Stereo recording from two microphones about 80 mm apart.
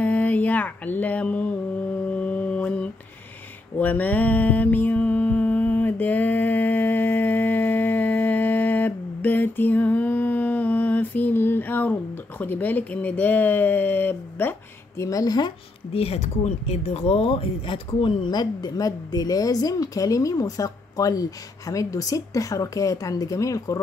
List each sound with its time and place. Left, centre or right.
0.0 s mantra: centre
15.0 s a woman's voice: left
17.6 s a woman's voice: left